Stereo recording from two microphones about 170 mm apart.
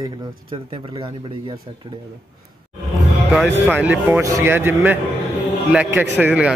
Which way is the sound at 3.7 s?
10° right (ahead or behind).